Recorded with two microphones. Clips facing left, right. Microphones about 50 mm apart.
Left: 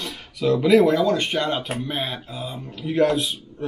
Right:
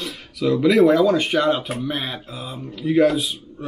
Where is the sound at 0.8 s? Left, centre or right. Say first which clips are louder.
Right 4 dB; centre.